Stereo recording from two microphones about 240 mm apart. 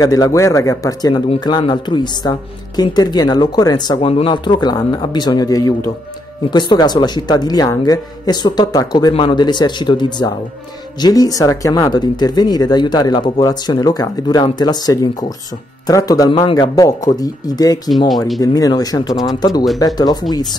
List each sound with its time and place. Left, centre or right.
0.0 s speech: centre
17.8 s speech: centre
18.4 s speech: centre